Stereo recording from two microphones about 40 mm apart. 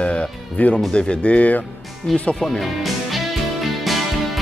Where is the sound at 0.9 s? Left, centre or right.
Left.